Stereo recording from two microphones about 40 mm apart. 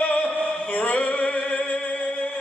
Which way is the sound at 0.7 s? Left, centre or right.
Left.